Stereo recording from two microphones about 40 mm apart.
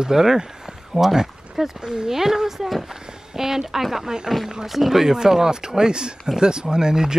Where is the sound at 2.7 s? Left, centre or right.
Centre.